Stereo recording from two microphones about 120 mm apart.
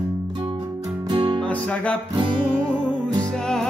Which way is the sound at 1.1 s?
40° right (ahead or behind).